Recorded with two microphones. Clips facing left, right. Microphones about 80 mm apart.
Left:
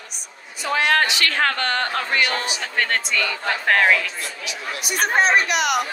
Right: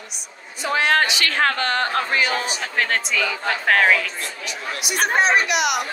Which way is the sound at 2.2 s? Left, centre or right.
Centre.